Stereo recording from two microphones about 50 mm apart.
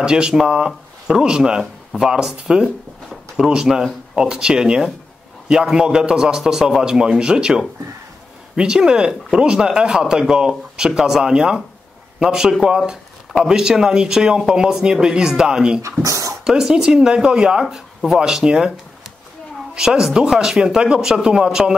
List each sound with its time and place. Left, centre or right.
0.0 s speech: centre
1.6 s a sound: centre
2.0 s speech: centre
15.8 s speech: right
16.4 s speech: centre
19.7 s speech: centre